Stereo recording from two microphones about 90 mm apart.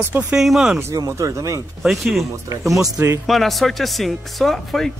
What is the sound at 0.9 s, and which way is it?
Speech, 40° right (ahead or behind).